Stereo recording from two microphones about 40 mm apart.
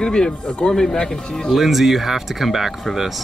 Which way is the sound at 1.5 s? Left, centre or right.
Centre.